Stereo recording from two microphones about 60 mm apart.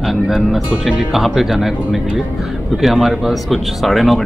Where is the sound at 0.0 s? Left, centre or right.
Centre.